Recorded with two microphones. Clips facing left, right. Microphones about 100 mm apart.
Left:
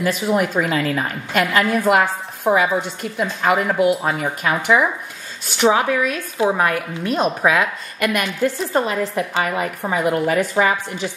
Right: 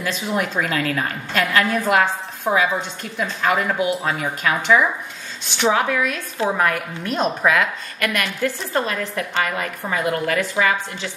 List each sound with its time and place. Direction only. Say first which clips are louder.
0.1 s a woman's voice: left 2 dB; 5° left (ahead or behind)